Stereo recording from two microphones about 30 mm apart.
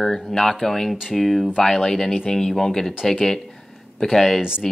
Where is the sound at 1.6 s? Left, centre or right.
Centre.